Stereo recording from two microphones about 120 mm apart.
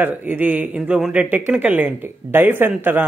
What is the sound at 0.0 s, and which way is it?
Speech, 15° right (ahead or behind).